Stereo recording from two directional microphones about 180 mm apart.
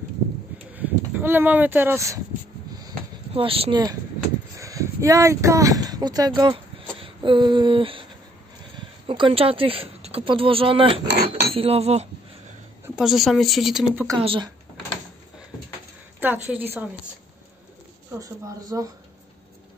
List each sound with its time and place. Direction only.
0.7 s speech: 10° right (ahead or behind)
3.3 s speech: 30° right (ahead or behind)
11.1 s cutlery: 65° right (ahead or behind)
11.5 s chink: 35° right (ahead or behind)
12.8 s speech: 5° right (ahead or behind)
14.1 s speech: 25° right (ahead or behind)
16.4 s a woman's voice: 10° right (ahead or behind)
18.2 s speech: 20° right (ahead or behind)